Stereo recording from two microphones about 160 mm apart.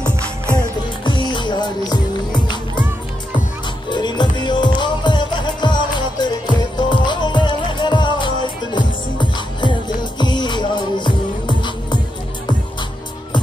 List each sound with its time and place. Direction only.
0.6 s music: 30° left (ahead or behind)
3.9 s music: 25° left (ahead or behind)